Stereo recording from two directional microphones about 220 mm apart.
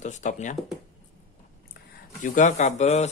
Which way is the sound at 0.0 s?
35° left (ahead or behind).